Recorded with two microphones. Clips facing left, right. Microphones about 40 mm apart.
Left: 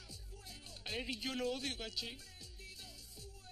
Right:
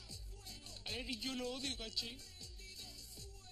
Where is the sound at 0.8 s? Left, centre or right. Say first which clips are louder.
Left 2 dB; centre.